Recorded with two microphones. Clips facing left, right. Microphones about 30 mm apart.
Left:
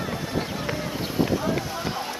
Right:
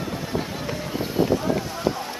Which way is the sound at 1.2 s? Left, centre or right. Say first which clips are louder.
Right 2 dB; centre.